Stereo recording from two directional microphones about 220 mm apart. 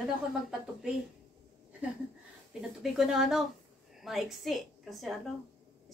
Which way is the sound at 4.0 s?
Centre (ahead or behind).